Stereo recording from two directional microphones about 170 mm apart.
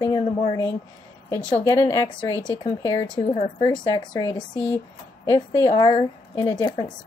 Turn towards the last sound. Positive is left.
turn(degrees=25)  # may be behind; listen again after turning